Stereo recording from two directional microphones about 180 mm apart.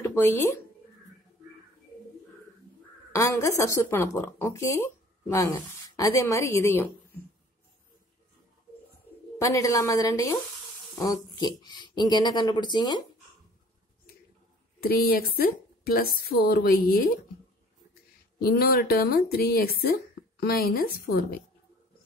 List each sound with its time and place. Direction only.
0.0 s speech: 15° left (ahead or behind)
3.1 s a woman's voice: 15° left (ahead or behind)
9.4 s a woman's voice: 15° left (ahead or behind)
14.8 s a woman's voice: 55° left (ahead or behind)
18.4 s speech: 60° left (ahead or behind)